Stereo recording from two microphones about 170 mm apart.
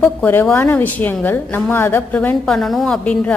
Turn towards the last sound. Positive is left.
turn(degrees=5)  # may be behind; listen again after turning